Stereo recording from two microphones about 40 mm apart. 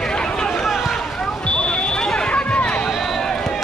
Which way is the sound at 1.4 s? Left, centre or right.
Left.